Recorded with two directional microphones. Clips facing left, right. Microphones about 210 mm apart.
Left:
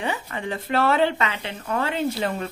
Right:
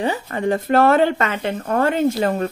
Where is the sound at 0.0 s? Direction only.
40° right (ahead or behind).